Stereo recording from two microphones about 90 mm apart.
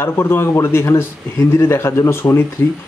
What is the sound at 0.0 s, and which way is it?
Speech, 25° left (ahead or behind).